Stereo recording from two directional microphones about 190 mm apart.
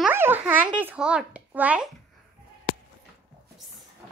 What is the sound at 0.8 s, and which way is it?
Speech, 5° right (ahead or behind).